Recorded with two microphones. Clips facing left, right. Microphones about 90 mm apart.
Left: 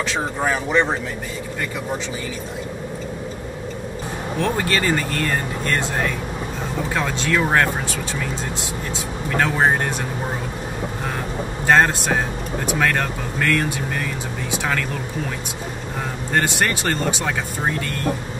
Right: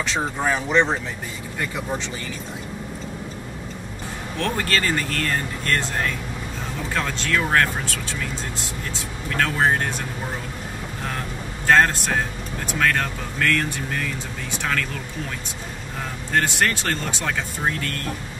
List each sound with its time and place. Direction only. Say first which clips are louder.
0.0 s speech: left 1 dB; 5° left (ahead or behind)
4.4 s speech: left 2 dB; 10° left (ahead or behind)
9.3 s speech: left 2 dB; 20° left (ahead or behind)
11.6 s speech: left 1 dB; 15° left (ahead or behind)
16.4 s speech: left 2 dB; 10° left (ahead or behind)